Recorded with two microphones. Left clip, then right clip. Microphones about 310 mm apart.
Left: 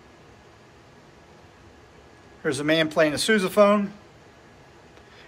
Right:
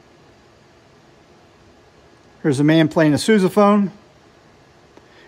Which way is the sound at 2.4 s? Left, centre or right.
Right.